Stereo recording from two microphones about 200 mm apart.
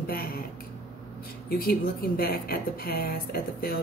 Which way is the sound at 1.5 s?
50° left (ahead or behind).